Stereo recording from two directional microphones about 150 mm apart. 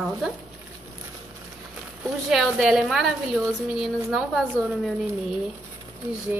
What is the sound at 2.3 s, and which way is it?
A woman's voice, centre (ahead or behind).